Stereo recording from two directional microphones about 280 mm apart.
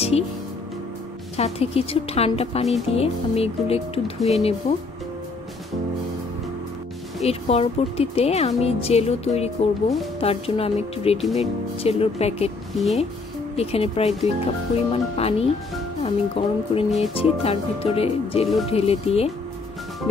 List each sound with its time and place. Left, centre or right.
1.3 s speech: left
7.2 s speech: left
13.6 s speech: left